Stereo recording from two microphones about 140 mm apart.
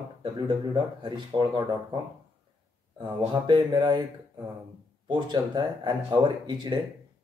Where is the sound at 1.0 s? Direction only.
30° right (ahead or behind).